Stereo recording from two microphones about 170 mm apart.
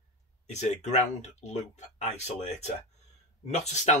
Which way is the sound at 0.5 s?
45° left (ahead or behind).